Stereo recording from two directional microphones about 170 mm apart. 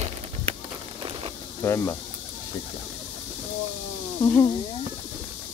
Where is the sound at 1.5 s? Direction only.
15° left (ahead or behind).